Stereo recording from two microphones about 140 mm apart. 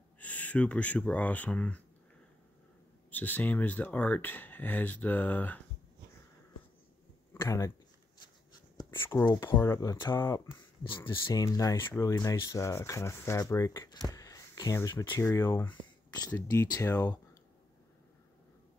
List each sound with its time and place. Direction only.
0.2 s speech: 10° left (ahead or behind)
3.1 s speech: 10° left (ahead or behind)
7.3 s speech: 20° left (ahead or behind)
8.9 s a sound: 15° left (ahead or behind)
9.5 s speech: 25° left (ahead or behind)